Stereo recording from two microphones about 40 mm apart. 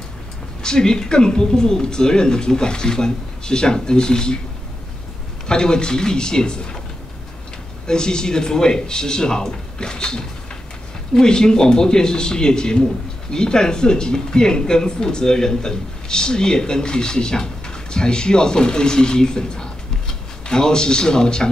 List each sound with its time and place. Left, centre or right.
0.6 s speech: centre
5.5 s speech: centre
7.8 s speech: centre